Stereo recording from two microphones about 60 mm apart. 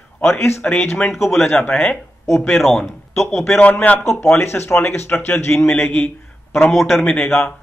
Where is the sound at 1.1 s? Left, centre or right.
Centre.